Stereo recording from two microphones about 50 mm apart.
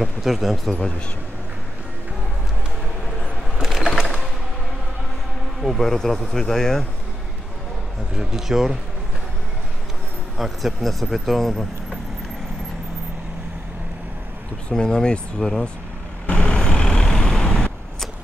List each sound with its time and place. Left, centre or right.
0.0 s speech: centre
0.7 s speech: centre
3.6 s a sound: centre
5.6 s speech: centre
8.2 s speech: centre
10.3 s speech: centre
14.7 s speech: centre
16.3 s vehicle: left